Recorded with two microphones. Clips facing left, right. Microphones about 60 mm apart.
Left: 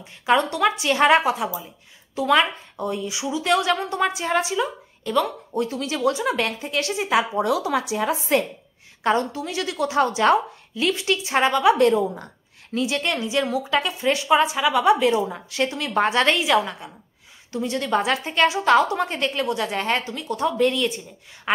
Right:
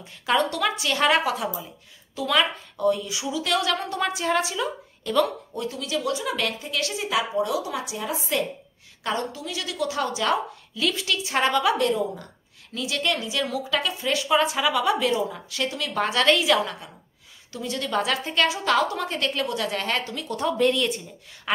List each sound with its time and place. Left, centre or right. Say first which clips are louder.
0.3 s a woman's voice: left 4 dB; left
1.4 s a woman's voice: left 2 dB; centre
2.1 s a woman's voice: left 4 dB; left; by 5.3 s centre
5.5 s a woman's voice: left 4 dB; left
7.4 s speech: left 5 dB; left
9.0 s a woman's voice: left 6 dB; left; by 11.7 s centre
11.8 s a woman's voice: left 5 dB; left
14.4 s a woman's voice: left 3 dB; centre
17.5 s a woman's voice: left 5 dB; left; by 20.9 s centre
21.5 s speech: left 4 dB; left